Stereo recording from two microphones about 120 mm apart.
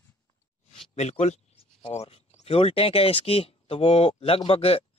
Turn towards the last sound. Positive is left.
turn(degrees=55)  # may be behind; listen again after turning